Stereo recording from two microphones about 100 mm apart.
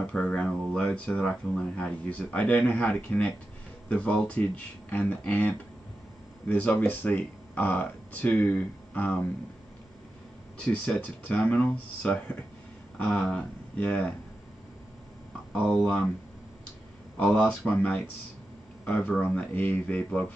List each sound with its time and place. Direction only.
0.0 s speech: 10° left (ahead or behind)
6.5 s speech: 15° left (ahead or behind)
10.6 s speech: 15° left (ahead or behind)
15.7 s speech: 10° left (ahead or behind)
17.2 s speech: 10° left (ahead or behind)